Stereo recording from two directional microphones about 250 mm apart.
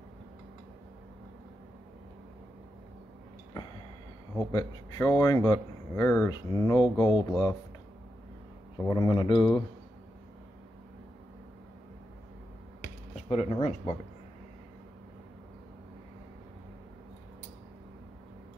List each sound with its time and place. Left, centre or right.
4.5 s speech: centre
8.8 s speech: centre
13.3 s speech: left